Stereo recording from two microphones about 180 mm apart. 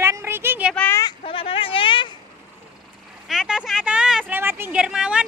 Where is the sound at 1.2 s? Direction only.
30° left (ahead or behind).